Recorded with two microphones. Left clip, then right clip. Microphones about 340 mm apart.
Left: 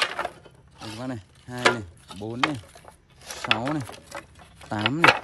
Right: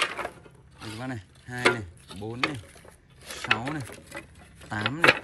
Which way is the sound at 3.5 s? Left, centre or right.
Centre.